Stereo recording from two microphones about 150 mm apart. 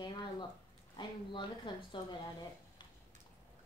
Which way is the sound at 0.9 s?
30° left (ahead or behind).